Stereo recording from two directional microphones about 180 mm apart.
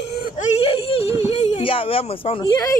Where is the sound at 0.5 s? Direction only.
35° left (ahead or behind).